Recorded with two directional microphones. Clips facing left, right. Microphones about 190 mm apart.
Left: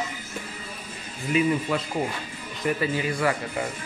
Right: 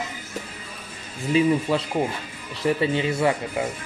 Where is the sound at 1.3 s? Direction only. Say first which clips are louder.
Right 3 dB; 30° right (ahead or behind).